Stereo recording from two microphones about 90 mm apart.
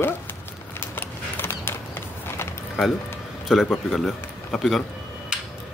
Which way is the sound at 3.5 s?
Centre (ahead or behind).